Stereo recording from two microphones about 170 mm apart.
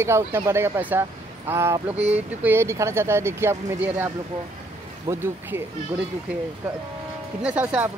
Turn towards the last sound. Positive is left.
turn(degrees=-10)  # may be behind; listen again after turning